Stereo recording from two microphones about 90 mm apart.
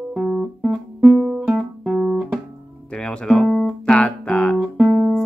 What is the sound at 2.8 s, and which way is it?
Music, 10° left (ahead or behind).